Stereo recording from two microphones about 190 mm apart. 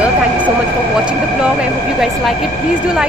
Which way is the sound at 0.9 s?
5° right (ahead or behind).